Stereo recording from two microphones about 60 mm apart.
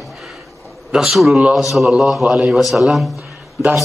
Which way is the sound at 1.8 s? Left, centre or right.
Centre.